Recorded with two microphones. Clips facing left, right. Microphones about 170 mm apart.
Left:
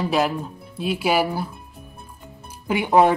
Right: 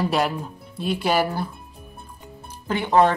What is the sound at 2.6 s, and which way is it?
Speech, 10° left (ahead or behind).